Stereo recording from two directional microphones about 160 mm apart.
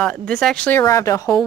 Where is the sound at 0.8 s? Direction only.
20° left (ahead or behind).